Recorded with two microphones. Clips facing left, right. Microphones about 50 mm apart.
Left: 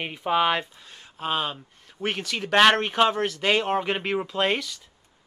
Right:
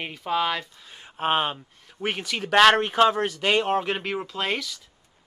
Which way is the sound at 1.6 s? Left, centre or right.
Centre.